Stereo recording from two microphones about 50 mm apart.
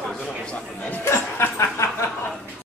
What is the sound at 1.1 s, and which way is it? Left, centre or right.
Chuckle, left.